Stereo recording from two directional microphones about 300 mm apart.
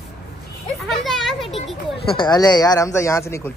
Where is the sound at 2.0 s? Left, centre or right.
Centre.